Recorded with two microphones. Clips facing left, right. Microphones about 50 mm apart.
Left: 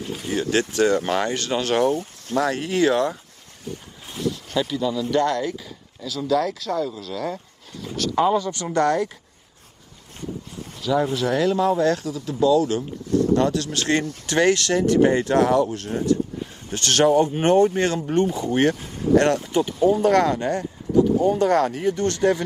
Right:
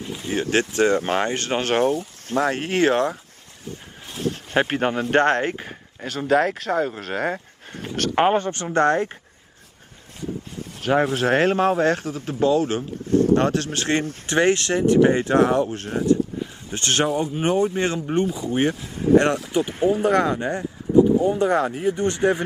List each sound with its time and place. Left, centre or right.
0.2 s speech: right
8.7 s speech: right
10.5 s speech: right
17.4 s speech: centre
19.7 s speech: right
20.0 s speech: centre